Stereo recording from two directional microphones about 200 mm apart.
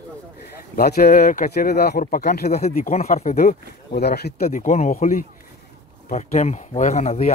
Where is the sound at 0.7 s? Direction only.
50° left (ahead or behind).